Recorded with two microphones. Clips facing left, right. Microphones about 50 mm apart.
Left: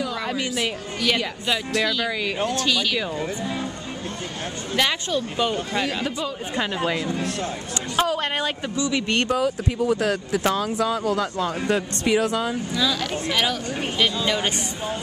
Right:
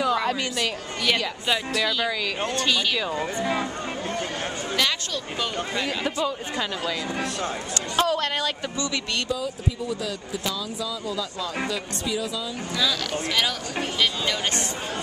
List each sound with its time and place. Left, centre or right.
0.0 s a sound: centre
0.3 s a woman's voice: centre
4.7 s speech: centre
7.9 s speech: centre
8.2 s speech: left
9.1 s speech: left
12.0 s speech: left
13.3 s speech: centre